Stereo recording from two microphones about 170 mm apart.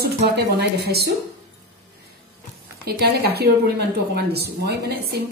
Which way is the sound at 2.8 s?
70° right (ahead or behind).